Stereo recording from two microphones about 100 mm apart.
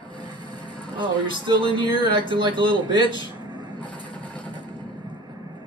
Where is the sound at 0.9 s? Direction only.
55° right (ahead or behind).